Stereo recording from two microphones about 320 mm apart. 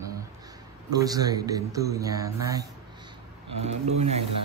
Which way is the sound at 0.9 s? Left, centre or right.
Centre.